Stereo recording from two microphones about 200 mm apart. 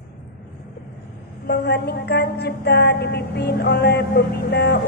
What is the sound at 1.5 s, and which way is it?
A woman's voice, 55° left (ahead or behind).